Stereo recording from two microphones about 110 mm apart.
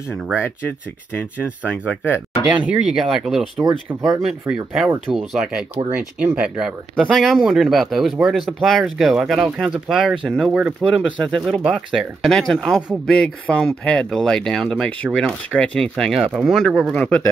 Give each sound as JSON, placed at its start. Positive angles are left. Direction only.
{"t": 0.4, "sound": "speech", "side_deg": 20}
{"t": 2.5, "sound": "speech", "side_deg": -10}
{"t": 3.6, "sound": "speech", "side_deg": -35}
{"t": 4.3, "sound": "speech", "side_deg": -5}
{"t": 7.0, "sound": "speech", "side_deg": 0}